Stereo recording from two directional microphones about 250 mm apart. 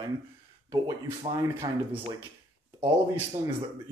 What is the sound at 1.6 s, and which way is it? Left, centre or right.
Speech, centre.